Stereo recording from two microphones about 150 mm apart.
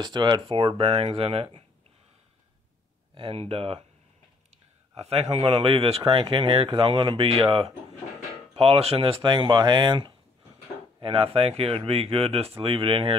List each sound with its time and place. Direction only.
0.0 s speech: 30° right (ahead or behind)
3.2 s speech: 40° right (ahead or behind)
4.9 s a man's voice: 45° right (ahead or behind)